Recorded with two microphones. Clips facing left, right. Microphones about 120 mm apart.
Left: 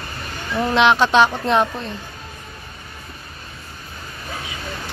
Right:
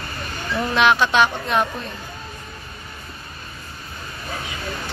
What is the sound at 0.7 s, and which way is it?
Speech, 25° left (ahead or behind).